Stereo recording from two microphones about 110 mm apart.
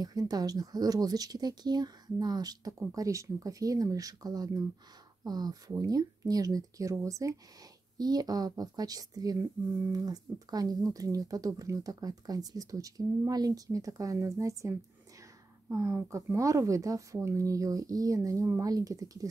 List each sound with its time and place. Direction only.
0.0 s speech: 35° right (ahead or behind)